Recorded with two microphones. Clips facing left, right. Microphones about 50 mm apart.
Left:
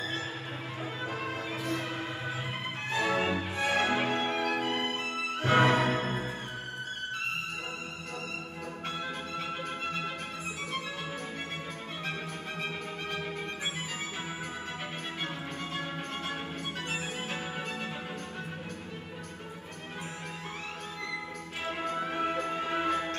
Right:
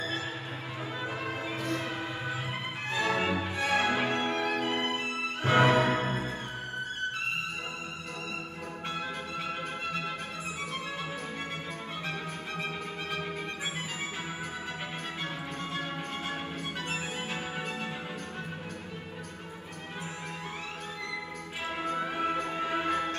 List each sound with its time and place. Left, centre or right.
1.2 s music: centre
2.9 s music: centre
4.6 s music: centre
9.0 s music: centre
16.9 s music: centre
21.6 s music: centre